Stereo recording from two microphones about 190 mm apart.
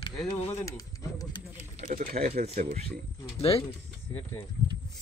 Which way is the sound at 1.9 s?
40° right (ahead or behind).